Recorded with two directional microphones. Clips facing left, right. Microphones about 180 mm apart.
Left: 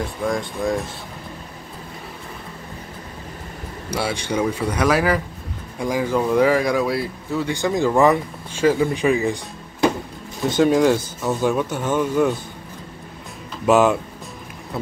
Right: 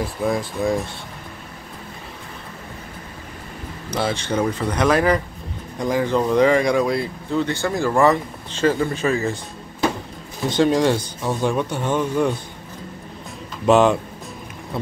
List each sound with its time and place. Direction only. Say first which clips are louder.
0.0 s speech: right 1 dB; 5° right (ahead or behind)
3.9 s speech: right 1 dB; 10° left (ahead or behind)
10.5 s speech: left 1 dB; 5° left (ahead or behind)
13.7 s speech: right 1 dB; 5° left (ahead or behind)